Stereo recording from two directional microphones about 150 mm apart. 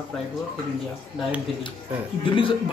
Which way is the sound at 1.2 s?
10° right (ahead or behind).